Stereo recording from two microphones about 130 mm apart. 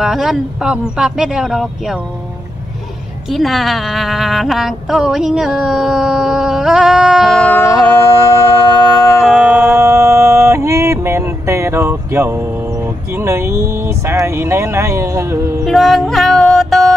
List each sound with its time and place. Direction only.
0.0 s speech: 5° right (ahead or behind)
3.3 s speech: centre (ahead or behind)
7.7 s music: 15° left (ahead or behind)
9.2 s music: 5° right (ahead or behind)
9.7 s a sound: 20° right (ahead or behind)
15.6 s music: centre (ahead or behind)